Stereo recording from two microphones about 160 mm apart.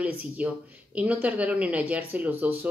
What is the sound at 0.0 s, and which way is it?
A woman's voice, 10° right (ahead or behind).